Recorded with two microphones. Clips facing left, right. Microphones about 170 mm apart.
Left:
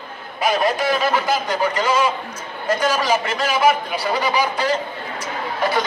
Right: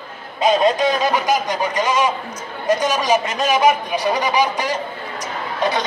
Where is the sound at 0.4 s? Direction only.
20° right (ahead or behind).